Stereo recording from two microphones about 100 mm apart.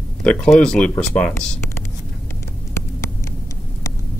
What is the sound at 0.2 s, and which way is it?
A man's voice, 10° left (ahead or behind).